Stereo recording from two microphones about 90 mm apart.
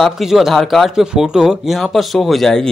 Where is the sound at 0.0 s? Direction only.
5° right (ahead or behind).